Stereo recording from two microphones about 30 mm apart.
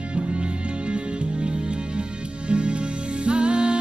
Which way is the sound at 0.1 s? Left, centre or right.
Right.